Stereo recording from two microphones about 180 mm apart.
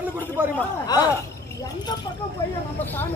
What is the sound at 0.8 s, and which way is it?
Speech, 20° left (ahead or behind).